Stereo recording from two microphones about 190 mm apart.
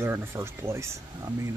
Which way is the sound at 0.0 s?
10° right (ahead or behind).